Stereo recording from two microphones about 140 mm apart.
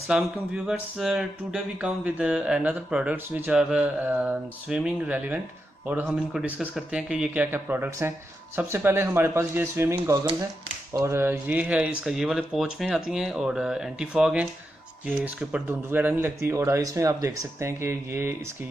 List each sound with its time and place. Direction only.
0.1 s speech: 5° right (ahead or behind); by 18.3 s 20° right (ahead or behind)